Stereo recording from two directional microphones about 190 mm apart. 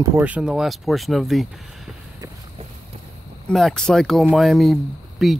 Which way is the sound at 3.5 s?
5° left (ahead or behind).